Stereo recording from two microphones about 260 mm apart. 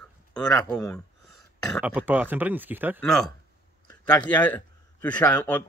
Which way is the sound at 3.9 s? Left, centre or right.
Centre.